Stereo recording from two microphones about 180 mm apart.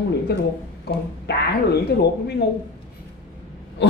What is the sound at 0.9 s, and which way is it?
Speech, 65° left (ahead or behind).